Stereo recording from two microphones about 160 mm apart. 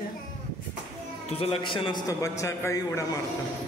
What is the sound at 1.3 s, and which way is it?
A man's voice, 35° left (ahead or behind).